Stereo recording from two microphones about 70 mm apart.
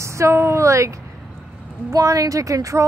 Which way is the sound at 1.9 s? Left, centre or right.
Right.